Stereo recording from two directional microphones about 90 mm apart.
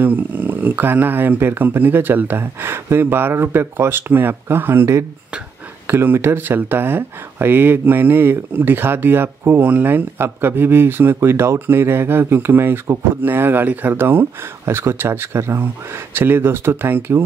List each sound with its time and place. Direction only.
0.0 s speech: 20° right (ahead or behind)